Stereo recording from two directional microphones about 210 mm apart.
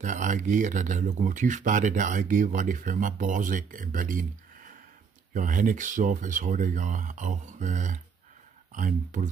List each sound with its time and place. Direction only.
0.0 s speech: 35° right (ahead or behind)